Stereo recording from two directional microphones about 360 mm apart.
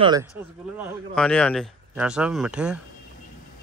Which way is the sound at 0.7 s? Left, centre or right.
Centre.